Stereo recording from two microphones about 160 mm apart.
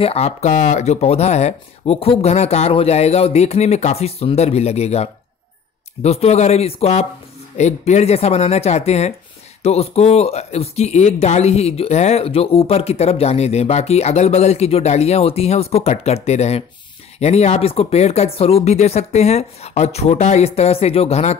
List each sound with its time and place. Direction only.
0.0 s speech: 40° left (ahead or behind)